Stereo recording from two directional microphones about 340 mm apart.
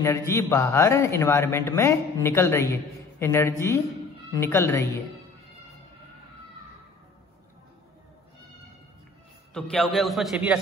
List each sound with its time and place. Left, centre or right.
0.0 s a man's voice: centre
9.5 s a man's voice: centre